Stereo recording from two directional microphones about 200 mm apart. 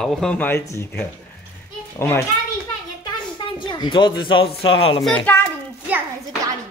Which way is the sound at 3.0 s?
25° left (ahead or behind).